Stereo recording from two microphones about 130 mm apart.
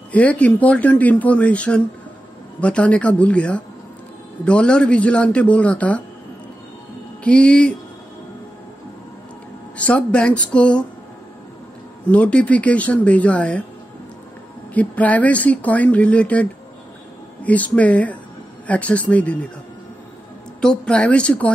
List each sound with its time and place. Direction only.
0.1 s speech: 10° left (ahead or behind)
7.2 s speech: 10° left (ahead or behind)
9.8 s speech: 10° left (ahead or behind)
12.1 s speech: 10° left (ahead or behind)
14.7 s speech: 10° left (ahead or behind)
20.6 s speech: 5° left (ahead or behind)